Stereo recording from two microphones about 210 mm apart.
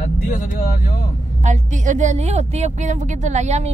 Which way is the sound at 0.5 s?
45° left (ahead or behind).